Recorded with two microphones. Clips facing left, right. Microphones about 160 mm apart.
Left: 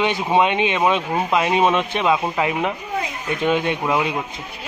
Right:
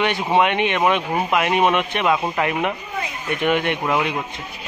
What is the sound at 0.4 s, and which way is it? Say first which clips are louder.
Speech: even; 20° left (ahead or behind).